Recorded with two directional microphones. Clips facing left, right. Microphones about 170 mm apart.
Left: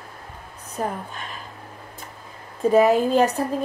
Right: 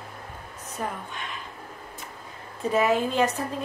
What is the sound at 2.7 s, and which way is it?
Speech, 40° left (ahead or behind).